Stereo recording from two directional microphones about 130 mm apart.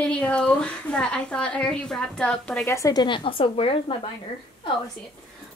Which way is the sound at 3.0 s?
40° left (ahead or behind).